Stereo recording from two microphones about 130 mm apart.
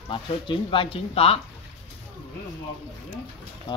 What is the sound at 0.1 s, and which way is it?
Speech, 40° left (ahead or behind).